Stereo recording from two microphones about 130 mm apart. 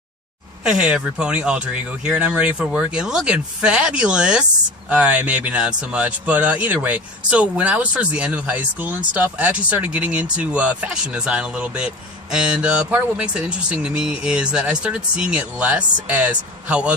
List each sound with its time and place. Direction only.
0.7 s speech: 5° right (ahead or behind)